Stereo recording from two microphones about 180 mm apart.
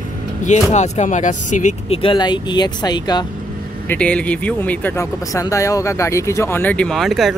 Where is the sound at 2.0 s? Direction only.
25° left (ahead or behind).